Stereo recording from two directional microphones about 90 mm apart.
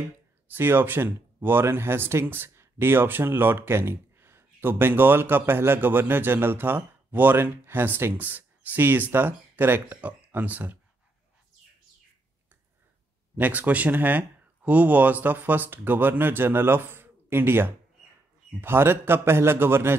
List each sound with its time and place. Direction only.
0.6 s speech: 25° right (ahead or behind)
13.4 s speech: 15° right (ahead or behind)